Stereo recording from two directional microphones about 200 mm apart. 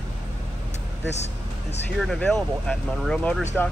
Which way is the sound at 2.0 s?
Centre (ahead or behind).